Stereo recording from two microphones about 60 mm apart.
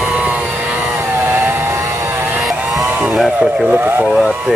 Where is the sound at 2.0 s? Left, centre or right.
Right.